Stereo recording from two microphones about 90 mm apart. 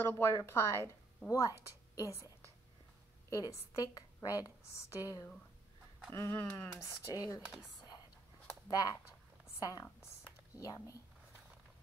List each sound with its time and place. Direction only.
0.0 s a woman's voice: 30° left (ahead or behind)
2.0 s a woman's voice: 35° left (ahead or behind)
6.1 s speech: 25° left (ahead or behind)
6.8 s a woman's voice: 35° left (ahead or behind)
8.6 s a woman's voice: 45° left (ahead or behind)